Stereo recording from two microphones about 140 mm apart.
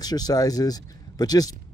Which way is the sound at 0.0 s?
30° left (ahead or behind).